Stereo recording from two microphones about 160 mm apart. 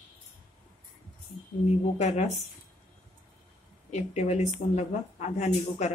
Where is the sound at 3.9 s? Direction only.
45° left (ahead or behind).